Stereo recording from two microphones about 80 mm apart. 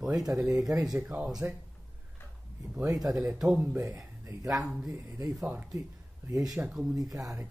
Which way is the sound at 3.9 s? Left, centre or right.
Right.